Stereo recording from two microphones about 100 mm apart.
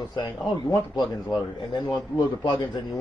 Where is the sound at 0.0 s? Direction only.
45° left (ahead or behind).